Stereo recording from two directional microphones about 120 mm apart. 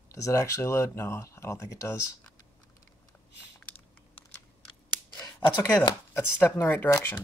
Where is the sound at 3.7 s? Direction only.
15° left (ahead or behind).